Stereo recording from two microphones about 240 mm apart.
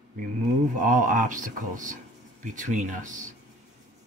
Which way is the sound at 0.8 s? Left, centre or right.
Right.